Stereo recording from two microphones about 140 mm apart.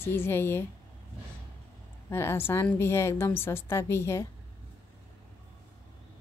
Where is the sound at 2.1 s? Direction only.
15° left (ahead or behind).